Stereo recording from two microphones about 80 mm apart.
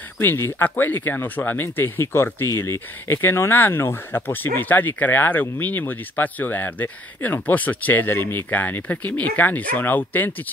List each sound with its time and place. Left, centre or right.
0.2 s speech: left